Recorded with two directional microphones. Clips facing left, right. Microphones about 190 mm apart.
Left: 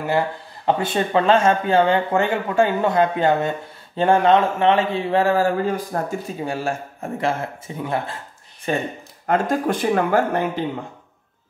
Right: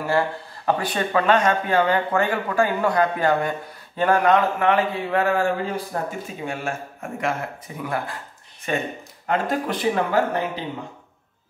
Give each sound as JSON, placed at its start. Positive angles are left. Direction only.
{"t": 0.0, "sound": "speech", "side_deg": 20}
{"t": 5.9, "sound": "a man's voice", "side_deg": 45}
{"t": 9.3, "sound": "speech", "side_deg": 45}